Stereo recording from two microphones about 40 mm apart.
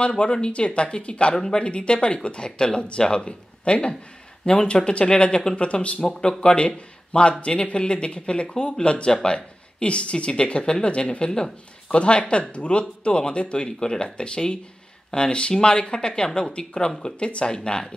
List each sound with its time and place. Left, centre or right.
0.1 s speech: left
5.6 s speech: left